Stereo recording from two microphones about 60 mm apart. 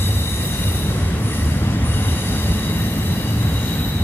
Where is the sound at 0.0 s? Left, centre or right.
Left.